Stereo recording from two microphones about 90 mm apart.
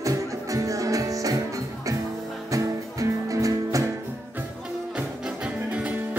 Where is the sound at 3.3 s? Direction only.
40° right (ahead or behind).